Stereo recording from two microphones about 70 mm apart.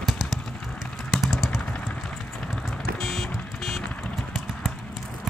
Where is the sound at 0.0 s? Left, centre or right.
Centre.